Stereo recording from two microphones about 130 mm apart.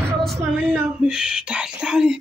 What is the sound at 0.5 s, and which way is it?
Speech, 10° right (ahead or behind).